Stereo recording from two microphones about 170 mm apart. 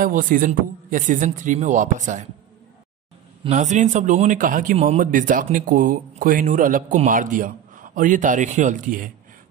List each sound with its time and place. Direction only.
0.0 s speech: 55° right (ahead or behind)
3.4 s speech: 45° right (ahead or behind)